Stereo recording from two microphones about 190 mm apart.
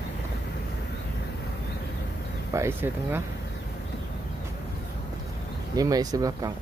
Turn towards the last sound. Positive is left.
turn(degrees=-20)  # may be behind; listen again after turning